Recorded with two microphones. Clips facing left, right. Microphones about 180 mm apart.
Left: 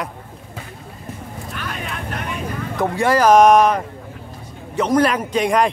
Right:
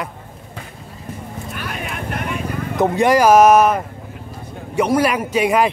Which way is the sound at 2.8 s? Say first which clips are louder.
Right 3 dB; 20° right (ahead or behind).